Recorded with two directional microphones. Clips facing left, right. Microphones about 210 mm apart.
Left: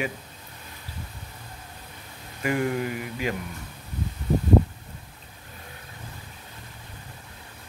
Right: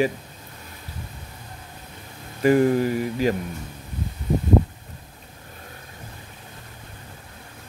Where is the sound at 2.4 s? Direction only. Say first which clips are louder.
Right 8 dB; 35° right (ahead or behind).